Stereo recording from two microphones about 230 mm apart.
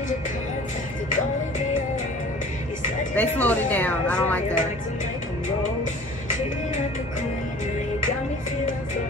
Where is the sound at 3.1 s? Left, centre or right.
Centre.